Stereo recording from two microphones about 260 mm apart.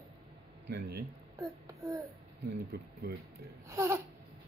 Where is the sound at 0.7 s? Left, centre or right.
Right.